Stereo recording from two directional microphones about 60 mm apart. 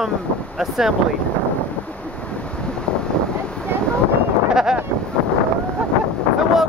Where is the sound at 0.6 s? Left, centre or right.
Centre.